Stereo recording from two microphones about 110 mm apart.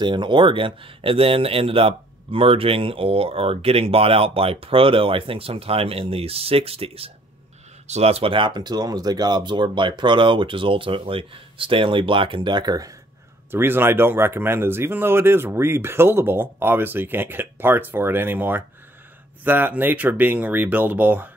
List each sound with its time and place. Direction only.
0.0 s speech: 45° right (ahead or behind); by 7.1 s 60° right (ahead or behind)
7.8 s speech: 80° right; by 12.9 s 35° right (ahead or behind)
13.5 s speech: 20° right (ahead or behind)